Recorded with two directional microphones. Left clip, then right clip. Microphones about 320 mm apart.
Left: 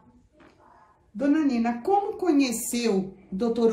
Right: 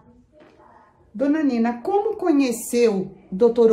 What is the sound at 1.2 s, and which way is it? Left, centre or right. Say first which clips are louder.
A woman's voice: right 3 dB; right.